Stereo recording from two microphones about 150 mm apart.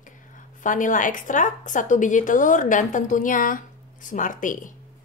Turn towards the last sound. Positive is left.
turn(degrees=60)  # may be behind; listen again after turning